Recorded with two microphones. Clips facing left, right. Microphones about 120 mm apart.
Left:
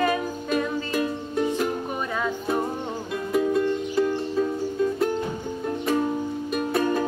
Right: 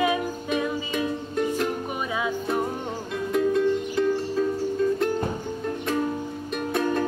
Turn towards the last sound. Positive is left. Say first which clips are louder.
# left 2 dB
turn(degrees=5)  # may be behind; listen again after turning